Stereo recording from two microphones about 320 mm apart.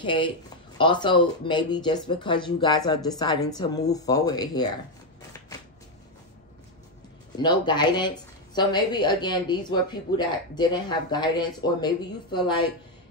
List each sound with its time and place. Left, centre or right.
0.0 s a woman's voice: centre
7.3 s a woman's voice: centre